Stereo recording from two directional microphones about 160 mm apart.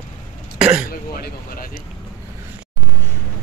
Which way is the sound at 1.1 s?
65° left (ahead or behind).